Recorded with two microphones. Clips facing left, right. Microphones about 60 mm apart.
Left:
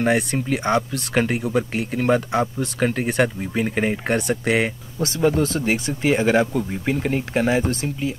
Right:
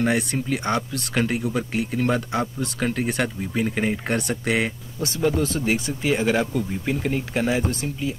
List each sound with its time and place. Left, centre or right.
0.0 s speech: centre
4.1 s speech: centre
7.3 s speech: centre